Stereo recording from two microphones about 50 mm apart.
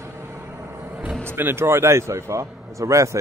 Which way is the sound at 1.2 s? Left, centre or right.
Right.